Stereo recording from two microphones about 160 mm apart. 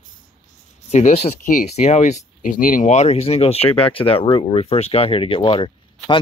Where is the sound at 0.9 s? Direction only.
45° left (ahead or behind).